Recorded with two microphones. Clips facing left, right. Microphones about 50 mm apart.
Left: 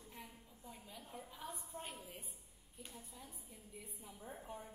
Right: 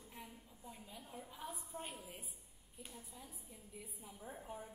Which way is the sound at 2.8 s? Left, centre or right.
Centre.